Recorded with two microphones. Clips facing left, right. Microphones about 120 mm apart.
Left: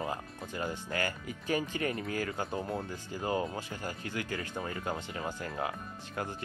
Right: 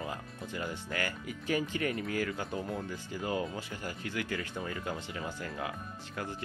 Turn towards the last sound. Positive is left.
turn(degrees=35)  # may be behind; listen again after turning